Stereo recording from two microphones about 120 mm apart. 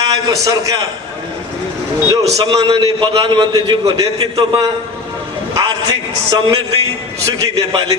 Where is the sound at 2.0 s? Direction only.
30° right (ahead or behind).